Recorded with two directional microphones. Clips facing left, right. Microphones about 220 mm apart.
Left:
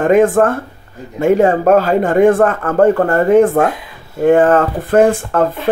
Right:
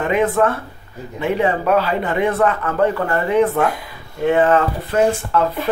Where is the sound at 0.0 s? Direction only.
45° left (ahead or behind).